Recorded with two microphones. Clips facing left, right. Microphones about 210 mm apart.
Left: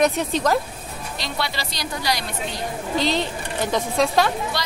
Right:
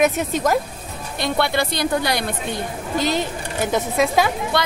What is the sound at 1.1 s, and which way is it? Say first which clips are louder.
A woman's voice: right 9 dB; 55° right (ahead or behind).